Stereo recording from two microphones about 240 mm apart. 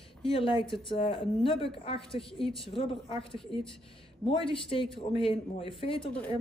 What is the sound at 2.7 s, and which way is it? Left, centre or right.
Speech, left.